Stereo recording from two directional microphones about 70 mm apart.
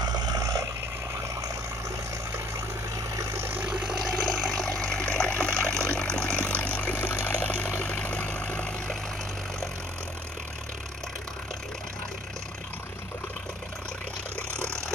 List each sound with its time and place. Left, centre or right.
0.0 s a sound: right
3.2 s vehicle: right
3.6 s vehicle: centre